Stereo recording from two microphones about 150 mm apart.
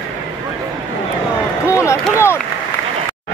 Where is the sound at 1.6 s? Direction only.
20° left (ahead or behind).